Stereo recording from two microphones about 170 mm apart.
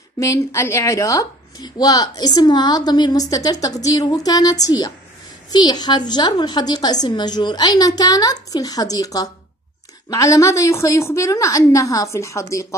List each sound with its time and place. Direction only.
0.2 s a woman's voice: 15° left (ahead or behind)